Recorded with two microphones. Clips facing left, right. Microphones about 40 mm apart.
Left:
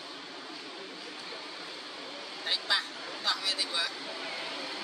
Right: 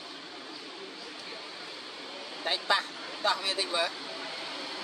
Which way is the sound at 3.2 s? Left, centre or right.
Right.